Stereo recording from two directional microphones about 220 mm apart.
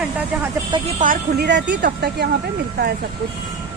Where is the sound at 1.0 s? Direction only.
45° right (ahead or behind).